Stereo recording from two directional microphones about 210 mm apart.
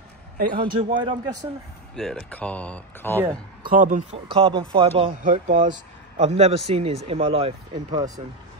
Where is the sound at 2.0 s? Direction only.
Centre (ahead or behind).